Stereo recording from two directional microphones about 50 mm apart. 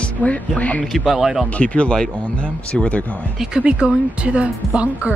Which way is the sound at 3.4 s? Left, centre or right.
Centre.